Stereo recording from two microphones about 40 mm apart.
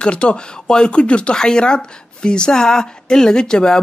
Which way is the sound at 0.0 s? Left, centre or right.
Left.